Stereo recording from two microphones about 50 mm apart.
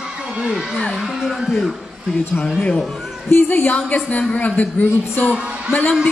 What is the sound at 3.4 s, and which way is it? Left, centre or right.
A woman's voice, left.